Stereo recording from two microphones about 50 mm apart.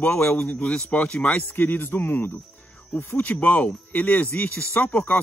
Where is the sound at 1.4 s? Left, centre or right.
Left.